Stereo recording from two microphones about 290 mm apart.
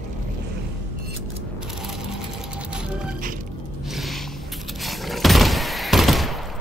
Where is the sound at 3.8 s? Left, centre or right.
Centre.